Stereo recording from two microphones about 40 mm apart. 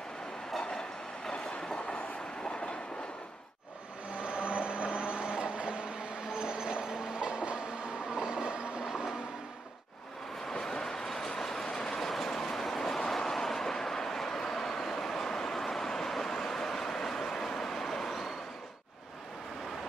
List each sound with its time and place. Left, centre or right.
0.5 s train: centre
4.2 s vehicle: right
6.3 s train: centre
8.8 s vehicle: centre
10.4 s train: centre
13.1 s vehicle: centre